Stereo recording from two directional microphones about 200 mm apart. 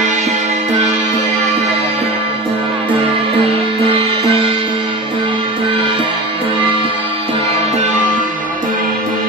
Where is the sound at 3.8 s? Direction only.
25° right (ahead or behind).